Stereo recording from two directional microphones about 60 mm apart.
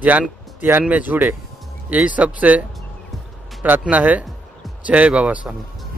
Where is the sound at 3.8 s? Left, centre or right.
Right.